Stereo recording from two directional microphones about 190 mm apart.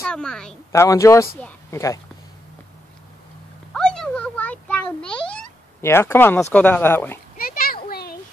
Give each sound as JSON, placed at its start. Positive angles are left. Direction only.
{"t": 0.0, "sound": "a woman's voice", "side_deg": 5}
{"t": 0.7, "sound": "a woman's voice", "side_deg": 15}
{"t": 3.7, "sound": "a sound", "side_deg": 5}
{"t": 5.0, "sound": "meow", "side_deg": 5}
{"t": 5.8, "sound": "speech", "side_deg": 15}
{"t": 7.3, "sound": "oink", "side_deg": 50}